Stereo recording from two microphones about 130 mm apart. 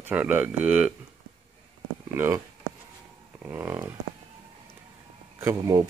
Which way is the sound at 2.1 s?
20° right (ahead or behind).